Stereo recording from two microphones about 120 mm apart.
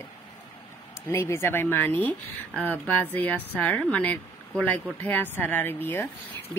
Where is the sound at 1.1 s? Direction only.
20° left (ahead or behind).